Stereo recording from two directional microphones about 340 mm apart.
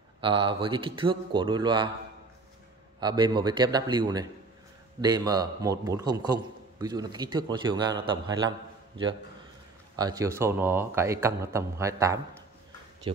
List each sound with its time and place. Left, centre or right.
0.2 s a man's voice: centre
3.0 s a man's voice: centre